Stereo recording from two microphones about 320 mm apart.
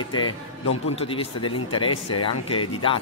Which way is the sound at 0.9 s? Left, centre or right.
Centre.